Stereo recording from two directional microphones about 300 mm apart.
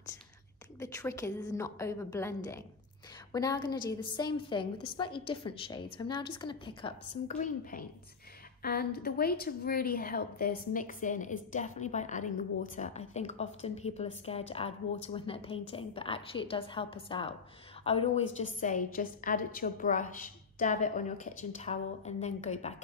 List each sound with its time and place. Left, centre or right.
0.7 s a woman's voice: centre
8.6 s a woman's voice: left